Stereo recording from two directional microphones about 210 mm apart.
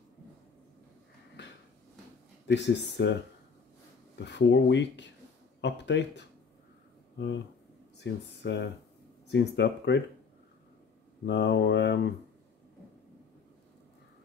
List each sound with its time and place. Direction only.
1.4 s a sound: 55° left (ahead or behind)
2.4 s speech: 55° left (ahead or behind)
4.2 s speech: 55° left (ahead or behind)
11.2 s speech: 55° left (ahead or behind)